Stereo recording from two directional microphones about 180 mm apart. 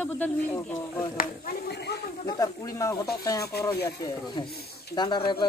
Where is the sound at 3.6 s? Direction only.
65° left (ahead or behind).